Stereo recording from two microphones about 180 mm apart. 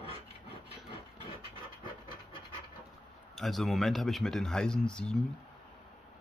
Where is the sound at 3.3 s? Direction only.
Centre (ahead or behind).